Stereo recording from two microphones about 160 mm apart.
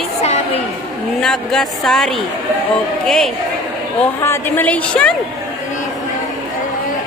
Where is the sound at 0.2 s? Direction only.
40° left (ahead or behind).